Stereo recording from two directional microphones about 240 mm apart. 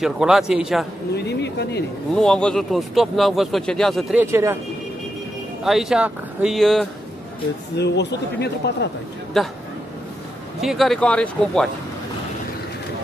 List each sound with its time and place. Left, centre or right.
0.0 s speech: centre
1.1 s a sound: left
2.1 s speech: centre
5.6 s speech: centre
7.7 s speech: left
9.3 s speech: centre
10.6 s speech: centre